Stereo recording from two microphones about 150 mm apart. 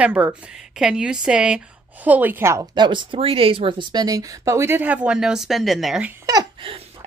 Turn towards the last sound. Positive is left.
turn(degrees=-30)  # may be behind; listen again after turning